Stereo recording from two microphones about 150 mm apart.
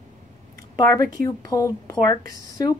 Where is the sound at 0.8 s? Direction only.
25° left (ahead or behind).